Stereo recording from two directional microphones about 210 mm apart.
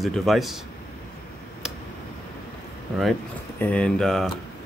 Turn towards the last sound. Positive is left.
turn(degrees=0)  # may be behind; listen again after turning